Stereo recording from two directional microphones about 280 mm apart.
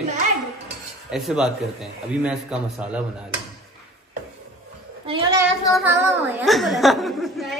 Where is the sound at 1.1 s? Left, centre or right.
Centre.